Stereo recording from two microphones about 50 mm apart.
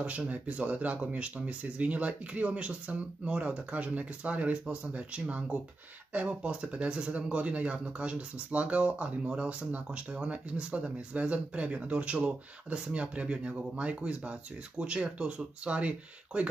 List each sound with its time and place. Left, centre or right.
0.3 s speech: right